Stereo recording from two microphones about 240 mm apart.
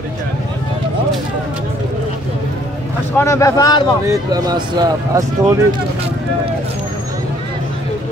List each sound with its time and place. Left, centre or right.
3.2 s speech: centre
4.1 s speech: centre